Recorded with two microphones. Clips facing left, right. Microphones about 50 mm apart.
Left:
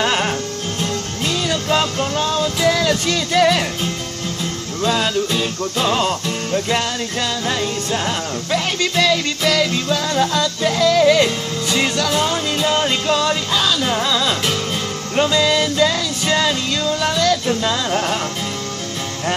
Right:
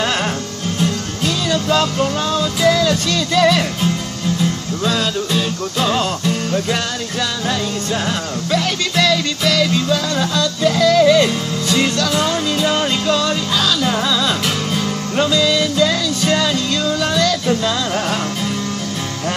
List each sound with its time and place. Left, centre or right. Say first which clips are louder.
0.0 s music: left 1 dB; centre
4.8 s music: left 1 dB; centre
8.5 s music: right 1 dB; centre